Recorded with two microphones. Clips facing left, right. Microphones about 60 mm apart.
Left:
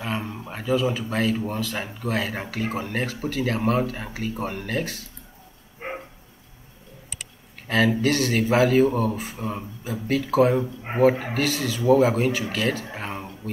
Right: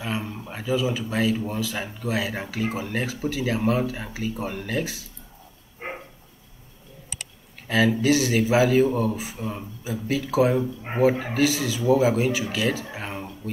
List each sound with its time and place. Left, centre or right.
0.0 s a sound: centre
0.6 s speech: centre
7.1 s a sound: centre
8.0 s speech: centre
9.4 s speech: centre
9.8 s speech: centre
10.5 s speech: centre